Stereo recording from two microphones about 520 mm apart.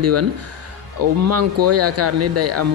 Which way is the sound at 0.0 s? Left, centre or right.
Right.